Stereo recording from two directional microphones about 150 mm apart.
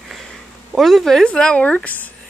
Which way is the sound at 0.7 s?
Centre (ahead or behind).